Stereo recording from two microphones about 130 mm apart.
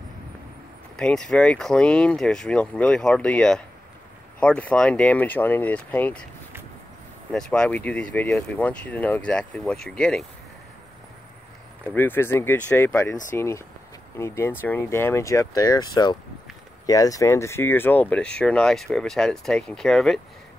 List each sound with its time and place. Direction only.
0.9 s speech: 5° left (ahead or behind)
7.3 s speech: 5° left (ahead or behind)
11.8 s speech: 15° left (ahead or behind)